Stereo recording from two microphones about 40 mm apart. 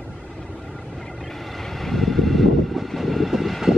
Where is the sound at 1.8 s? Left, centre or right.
Centre.